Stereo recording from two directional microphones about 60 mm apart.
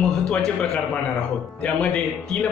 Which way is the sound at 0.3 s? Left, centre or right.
Centre.